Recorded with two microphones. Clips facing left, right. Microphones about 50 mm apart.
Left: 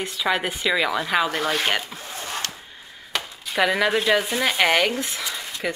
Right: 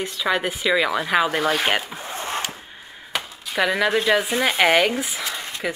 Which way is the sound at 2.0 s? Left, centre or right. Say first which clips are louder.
Right 4 dB; right.